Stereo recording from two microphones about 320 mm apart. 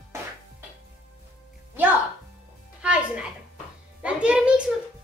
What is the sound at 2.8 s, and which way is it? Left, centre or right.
Music, centre.